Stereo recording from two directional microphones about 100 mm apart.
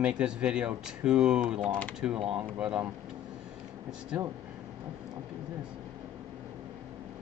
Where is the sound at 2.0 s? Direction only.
10° right (ahead or behind).